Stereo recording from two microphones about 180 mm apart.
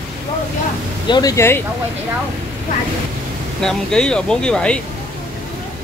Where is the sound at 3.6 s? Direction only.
5° left (ahead or behind).